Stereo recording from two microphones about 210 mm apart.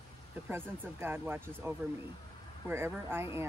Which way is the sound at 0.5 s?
10° right (ahead or behind).